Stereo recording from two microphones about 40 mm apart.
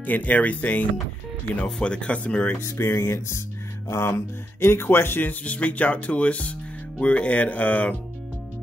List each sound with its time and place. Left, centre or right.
0.0 s speech: left
1.6 s speech: left
2.8 s music: left
4.0 s speech: left
5.3 s speech: left